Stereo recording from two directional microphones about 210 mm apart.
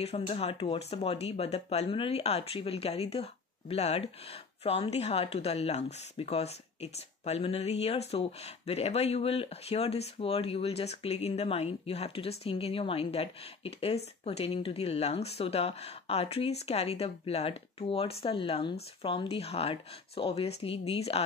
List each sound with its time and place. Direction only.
0.0 s speech: 30° left (ahead or behind)